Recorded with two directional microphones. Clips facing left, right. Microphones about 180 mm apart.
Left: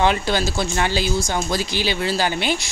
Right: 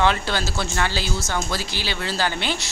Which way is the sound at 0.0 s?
15° left (ahead or behind).